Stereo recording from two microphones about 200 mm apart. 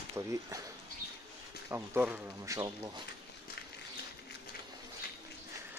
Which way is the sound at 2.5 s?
20° right (ahead or behind).